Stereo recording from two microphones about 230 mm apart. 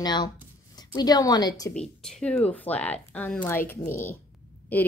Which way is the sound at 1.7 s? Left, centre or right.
Centre.